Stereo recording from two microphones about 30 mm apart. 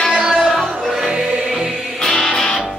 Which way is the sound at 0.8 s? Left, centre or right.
Centre.